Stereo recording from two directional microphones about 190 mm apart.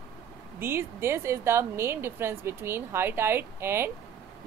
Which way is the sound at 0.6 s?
10° right (ahead or behind).